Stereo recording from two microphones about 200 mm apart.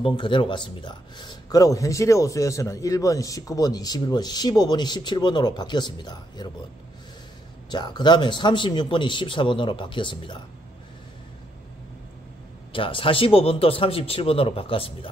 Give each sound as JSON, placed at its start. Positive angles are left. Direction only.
{"t": 0.0, "sound": "a man's voice", "side_deg": 25}
{"t": 7.7, "sound": "a man's voice", "side_deg": 20}
{"t": 12.7, "sound": "a man's voice", "side_deg": 25}